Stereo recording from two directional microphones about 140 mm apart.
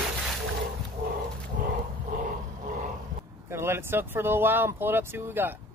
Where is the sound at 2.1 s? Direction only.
70° right (ahead or behind).